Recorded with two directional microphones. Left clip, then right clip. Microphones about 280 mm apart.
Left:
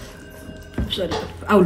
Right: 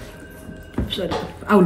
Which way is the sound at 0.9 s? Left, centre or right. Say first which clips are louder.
Left 1 dB; centre.